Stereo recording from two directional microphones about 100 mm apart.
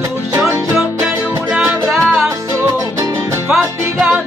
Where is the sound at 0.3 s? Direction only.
30° right (ahead or behind).